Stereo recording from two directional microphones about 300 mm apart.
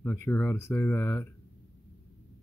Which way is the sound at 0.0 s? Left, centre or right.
Centre.